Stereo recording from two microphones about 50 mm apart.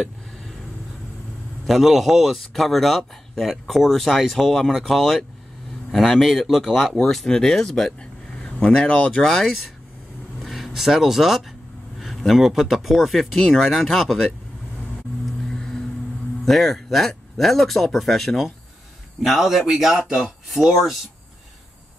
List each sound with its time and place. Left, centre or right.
1.7 s a man's voice: centre; by 9.1 s left
9.2 s a man's voice: centre
15.4 s vehicle: centre
16.4 s a man's voice: centre